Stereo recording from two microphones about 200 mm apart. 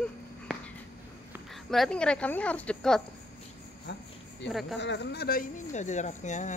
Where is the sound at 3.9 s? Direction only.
60° left (ahead or behind).